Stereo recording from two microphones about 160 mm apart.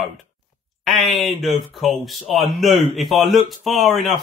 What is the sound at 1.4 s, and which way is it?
Speech, centre (ahead or behind).